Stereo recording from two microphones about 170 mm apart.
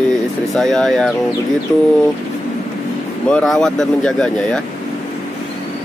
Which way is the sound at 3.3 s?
5° left (ahead or behind).